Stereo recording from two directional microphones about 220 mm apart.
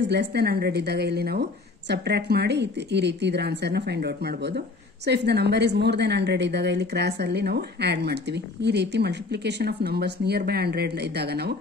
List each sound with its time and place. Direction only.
0.1 s a woman's voice: 50° right (ahead or behind)